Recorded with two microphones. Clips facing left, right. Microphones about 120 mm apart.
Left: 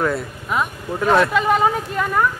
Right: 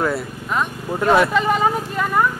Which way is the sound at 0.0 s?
5° right (ahead or behind).